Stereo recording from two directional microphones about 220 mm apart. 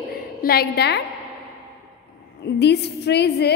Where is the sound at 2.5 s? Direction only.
50° left (ahead or behind).